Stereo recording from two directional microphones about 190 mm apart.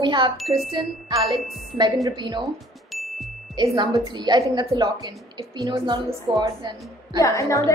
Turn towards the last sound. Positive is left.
turn(degrees=15)  # may be behind; listen again after turning